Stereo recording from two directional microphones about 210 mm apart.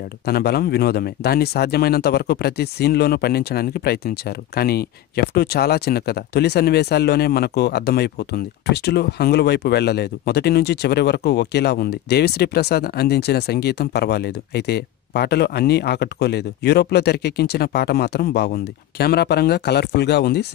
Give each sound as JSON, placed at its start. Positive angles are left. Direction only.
{"t": 0.2, "sound": "speech", "side_deg": 50}